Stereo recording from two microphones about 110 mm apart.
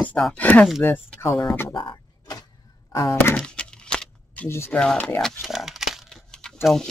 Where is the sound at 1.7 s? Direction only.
45° left (ahead or behind).